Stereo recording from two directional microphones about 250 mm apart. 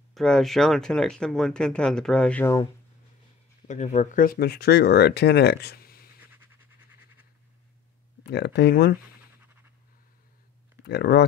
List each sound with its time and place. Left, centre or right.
0.1 s speech: centre
3.6 s speech: left
6.3 s pant: centre
8.3 s speech: left
10.9 s speech: left